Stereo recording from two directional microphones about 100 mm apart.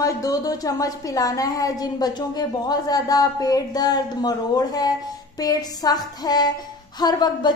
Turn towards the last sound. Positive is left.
turn(degrees=45)  # may be behind; listen again after turning